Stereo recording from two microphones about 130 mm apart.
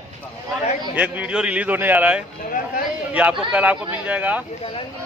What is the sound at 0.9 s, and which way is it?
A man's voice, 10° right (ahead or behind).